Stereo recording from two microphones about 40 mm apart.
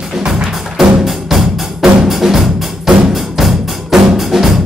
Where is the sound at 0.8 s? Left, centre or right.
Centre.